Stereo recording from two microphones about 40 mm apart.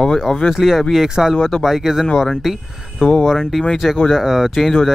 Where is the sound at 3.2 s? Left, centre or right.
Centre.